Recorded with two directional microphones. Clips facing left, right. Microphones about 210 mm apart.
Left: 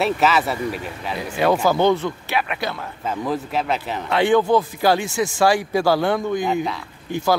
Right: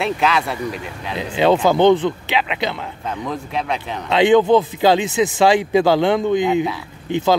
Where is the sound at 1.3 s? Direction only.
20° right (ahead or behind).